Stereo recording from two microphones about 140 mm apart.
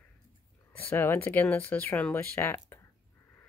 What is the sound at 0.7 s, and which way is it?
Speech, 15° left (ahead or behind).